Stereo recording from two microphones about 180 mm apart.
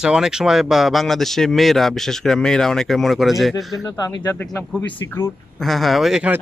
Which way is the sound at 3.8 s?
20° left (ahead or behind).